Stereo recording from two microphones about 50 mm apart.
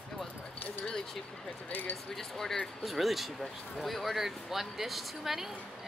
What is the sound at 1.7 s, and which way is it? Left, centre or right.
Speech, left.